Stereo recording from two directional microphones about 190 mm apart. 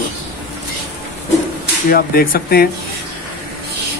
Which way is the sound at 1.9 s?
50° left (ahead or behind).